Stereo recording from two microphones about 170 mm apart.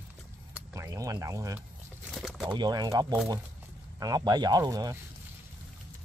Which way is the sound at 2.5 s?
25° right (ahead or behind).